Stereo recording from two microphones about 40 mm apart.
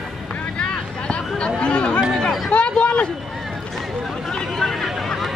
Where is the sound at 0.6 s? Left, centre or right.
Left.